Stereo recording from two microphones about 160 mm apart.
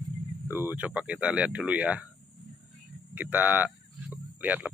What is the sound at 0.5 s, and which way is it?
Speech, 15° right (ahead or behind).